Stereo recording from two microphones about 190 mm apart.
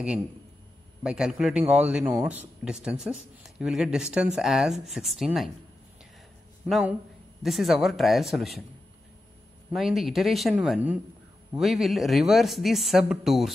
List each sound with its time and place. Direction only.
1.0 s speech: 5° right (ahead or behind)
6.7 s speech: 5° right (ahead or behind)
9.7 s speech: centre (ahead or behind)